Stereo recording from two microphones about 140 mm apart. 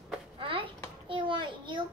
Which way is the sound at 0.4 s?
40° right (ahead or behind).